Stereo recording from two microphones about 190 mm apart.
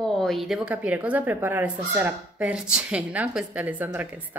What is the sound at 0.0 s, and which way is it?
Speech, centre (ahead or behind).